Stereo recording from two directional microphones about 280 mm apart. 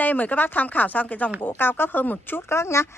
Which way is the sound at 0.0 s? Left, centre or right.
Centre.